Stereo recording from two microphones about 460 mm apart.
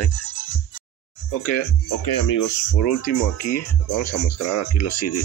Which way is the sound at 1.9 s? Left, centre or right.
Left.